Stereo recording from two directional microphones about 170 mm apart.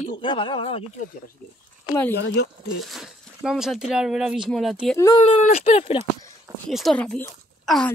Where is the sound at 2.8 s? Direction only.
Centre (ahead or behind).